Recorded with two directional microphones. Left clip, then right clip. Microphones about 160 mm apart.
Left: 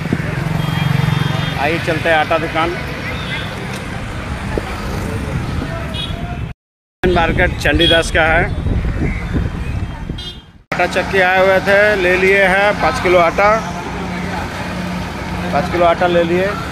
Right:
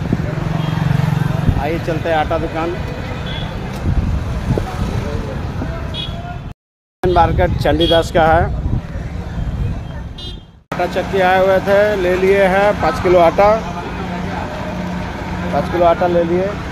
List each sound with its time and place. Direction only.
1.6 s speech: 10° left (ahead or behind)
7.0 s speech: 10° right (ahead or behind)
10.8 s speech: 5° right (ahead or behind)
12.8 s speech: 20° right (ahead or behind)
15.5 s speech: 5° right (ahead or behind)